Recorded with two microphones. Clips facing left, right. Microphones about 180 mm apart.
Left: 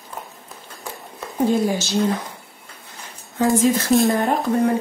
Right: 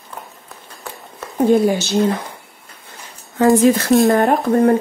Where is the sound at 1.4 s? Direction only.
60° right (ahead or behind).